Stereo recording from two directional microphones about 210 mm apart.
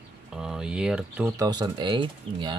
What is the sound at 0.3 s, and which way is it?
Speech, 5° right (ahead or behind).